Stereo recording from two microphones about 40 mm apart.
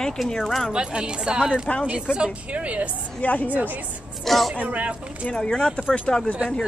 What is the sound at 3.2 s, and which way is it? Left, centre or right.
Speech, left.